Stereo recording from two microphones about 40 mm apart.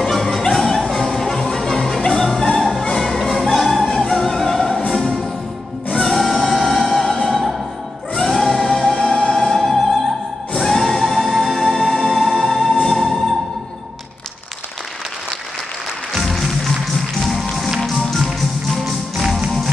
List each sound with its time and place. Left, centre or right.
0.0 s music: centre
2.7 s music: left
3.0 s music: centre
5.9 s music: centre
7.2 s opera: centre
8.2 s music: centre
8.6 s music: centre
9.3 s opera: centre
10.5 s music: centre
12.1 s music: centre
16.8 s music: centre